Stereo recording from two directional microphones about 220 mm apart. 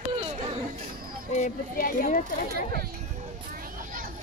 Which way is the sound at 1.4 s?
35° left (ahead or behind).